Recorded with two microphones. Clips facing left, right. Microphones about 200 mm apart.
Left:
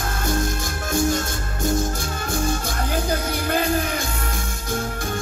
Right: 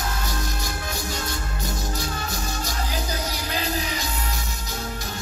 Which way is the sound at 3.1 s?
55° left (ahead or behind).